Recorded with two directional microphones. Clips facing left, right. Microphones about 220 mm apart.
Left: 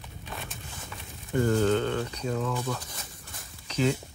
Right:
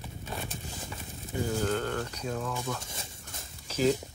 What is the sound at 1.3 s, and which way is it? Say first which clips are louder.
Speech: left 7 dB; 65° left (ahead or behind).